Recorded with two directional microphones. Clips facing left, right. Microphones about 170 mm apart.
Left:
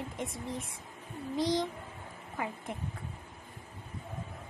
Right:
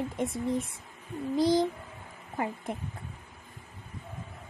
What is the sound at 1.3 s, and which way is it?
Child singing, 35° right (ahead or behind).